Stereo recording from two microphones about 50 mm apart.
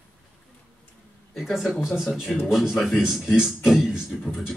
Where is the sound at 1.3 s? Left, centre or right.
Centre.